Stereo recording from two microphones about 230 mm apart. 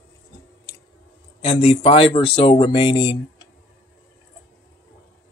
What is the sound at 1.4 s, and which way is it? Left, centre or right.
Speech, left.